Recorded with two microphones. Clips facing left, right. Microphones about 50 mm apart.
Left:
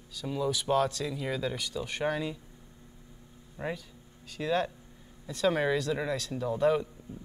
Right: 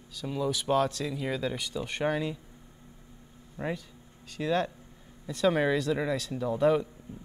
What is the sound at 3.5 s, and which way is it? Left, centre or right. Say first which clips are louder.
Speech: right 2 dB; centre.